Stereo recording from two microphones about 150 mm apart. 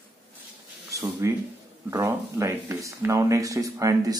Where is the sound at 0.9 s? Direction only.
20° right (ahead or behind).